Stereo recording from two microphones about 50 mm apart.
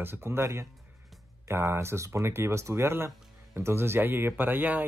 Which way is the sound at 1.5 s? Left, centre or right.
Right.